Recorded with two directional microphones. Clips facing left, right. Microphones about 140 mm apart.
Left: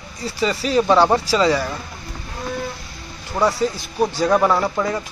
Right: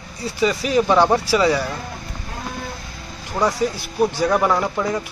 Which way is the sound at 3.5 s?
15° right (ahead or behind).